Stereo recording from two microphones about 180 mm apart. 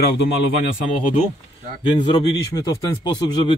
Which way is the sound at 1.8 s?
25° left (ahead or behind).